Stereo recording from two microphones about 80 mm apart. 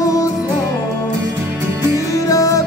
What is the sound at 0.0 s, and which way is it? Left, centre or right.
Music, left.